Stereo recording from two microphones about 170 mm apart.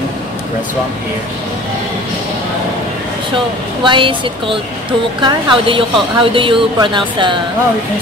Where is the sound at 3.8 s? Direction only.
30° right (ahead or behind).